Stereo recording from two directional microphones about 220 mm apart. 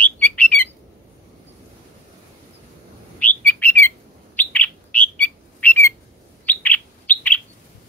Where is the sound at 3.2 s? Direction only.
10° left (ahead or behind).